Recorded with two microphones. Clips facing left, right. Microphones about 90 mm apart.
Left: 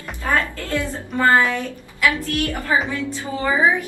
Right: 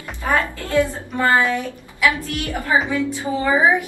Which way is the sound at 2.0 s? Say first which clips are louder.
Even; 20° right (ahead or behind).